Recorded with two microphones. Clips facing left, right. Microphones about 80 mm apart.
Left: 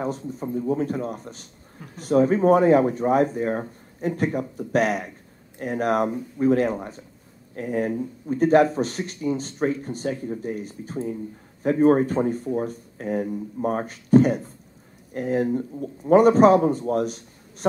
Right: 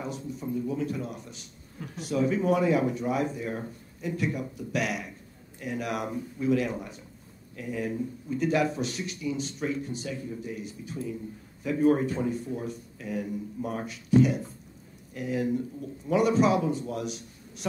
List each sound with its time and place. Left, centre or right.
0.0 s speech: left